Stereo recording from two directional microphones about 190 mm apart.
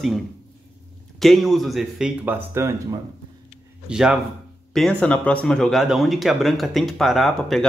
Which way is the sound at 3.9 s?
5° right (ahead or behind).